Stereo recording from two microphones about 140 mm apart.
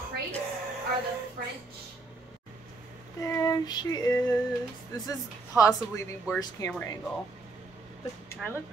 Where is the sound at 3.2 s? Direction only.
25° left (ahead or behind).